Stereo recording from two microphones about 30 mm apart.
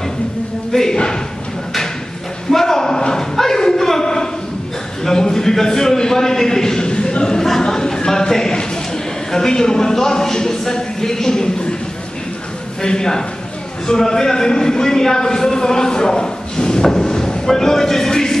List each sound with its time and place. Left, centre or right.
0.7 s a man's voice: left
2.5 s a sound: centre
9.3 s speech: left
12.8 s a man's voice: left